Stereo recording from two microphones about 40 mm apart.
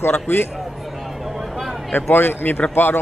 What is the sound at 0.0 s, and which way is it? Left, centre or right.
Speech, left.